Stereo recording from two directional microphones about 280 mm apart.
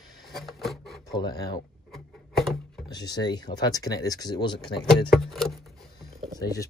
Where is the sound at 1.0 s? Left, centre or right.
Centre.